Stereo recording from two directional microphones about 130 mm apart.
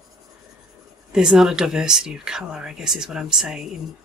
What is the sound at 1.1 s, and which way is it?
Speech, 5° right (ahead or behind).